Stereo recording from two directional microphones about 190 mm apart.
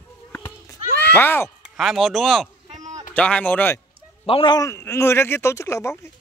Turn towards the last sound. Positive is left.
turn(degrees=15)  # may be behind; listen again after turning